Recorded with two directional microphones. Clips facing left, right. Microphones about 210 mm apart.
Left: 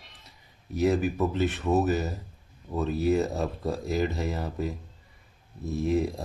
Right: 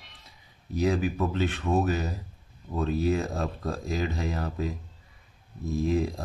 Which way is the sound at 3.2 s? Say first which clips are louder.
Left 2 dB; 20° left (ahead or behind).